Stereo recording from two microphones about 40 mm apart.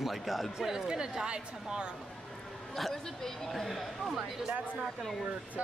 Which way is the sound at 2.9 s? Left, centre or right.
Centre.